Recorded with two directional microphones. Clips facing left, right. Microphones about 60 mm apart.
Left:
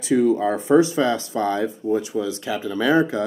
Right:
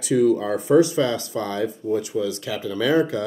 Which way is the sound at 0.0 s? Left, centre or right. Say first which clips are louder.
Left 1 dB; left.